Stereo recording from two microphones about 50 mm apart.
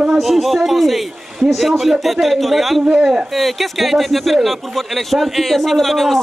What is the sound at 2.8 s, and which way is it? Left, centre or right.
Speech, centre.